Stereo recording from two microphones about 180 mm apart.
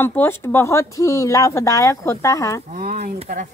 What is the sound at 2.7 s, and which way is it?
Speech, 45° right (ahead or behind).